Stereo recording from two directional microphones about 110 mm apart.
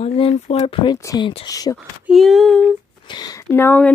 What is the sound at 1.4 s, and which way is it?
Speech, 35° left (ahead or behind).